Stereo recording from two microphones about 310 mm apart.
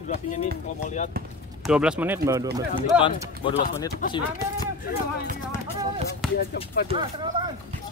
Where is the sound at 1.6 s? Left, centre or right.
Centre.